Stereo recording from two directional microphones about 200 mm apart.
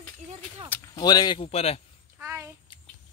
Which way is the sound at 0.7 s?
15° left (ahead or behind).